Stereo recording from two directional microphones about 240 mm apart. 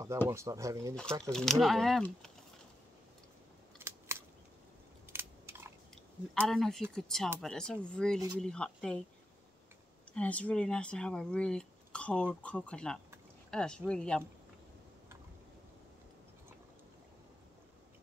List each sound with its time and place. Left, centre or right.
0.3 s speech: centre
1.3 s speech: centre
3.7 s scissors: centre
5.1 s biting: centre
6.3 s speech: centre
10.1 s speech: centre